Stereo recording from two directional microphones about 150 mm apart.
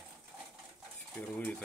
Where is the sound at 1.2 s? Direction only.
10° left (ahead or behind).